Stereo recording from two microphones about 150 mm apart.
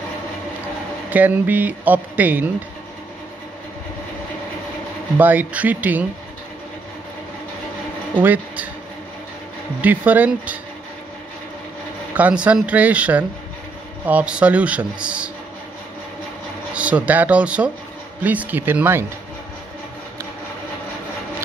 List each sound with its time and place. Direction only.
1.1 s speech: 10° right (ahead or behind)
5.1 s speech: 10° right (ahead or behind)
8.2 s speech: 10° right (ahead or behind)
9.8 s speech: 10° right (ahead or behind)
12.2 s speech: 10° right (ahead or behind)
16.7 s speech: 10° right (ahead or behind)